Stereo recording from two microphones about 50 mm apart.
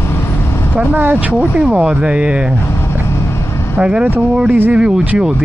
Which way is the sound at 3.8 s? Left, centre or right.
Right.